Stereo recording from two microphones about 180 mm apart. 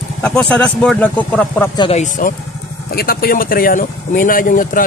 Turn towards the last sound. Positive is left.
turn(degrees=50)  # may be behind; listen again after turning